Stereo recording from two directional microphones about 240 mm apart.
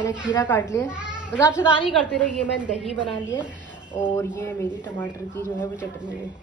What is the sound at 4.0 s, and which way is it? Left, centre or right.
Speech, centre.